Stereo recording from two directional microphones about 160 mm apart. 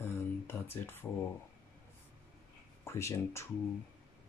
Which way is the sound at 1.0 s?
15° left (ahead or behind).